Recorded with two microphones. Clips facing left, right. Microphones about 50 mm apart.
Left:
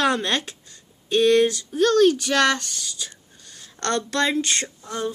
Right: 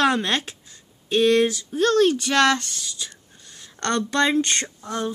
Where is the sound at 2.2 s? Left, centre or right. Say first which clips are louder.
Right 1 dB; centre.